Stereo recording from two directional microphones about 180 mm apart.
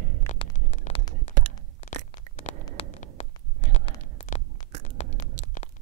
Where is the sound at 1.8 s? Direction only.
40° left (ahead or behind).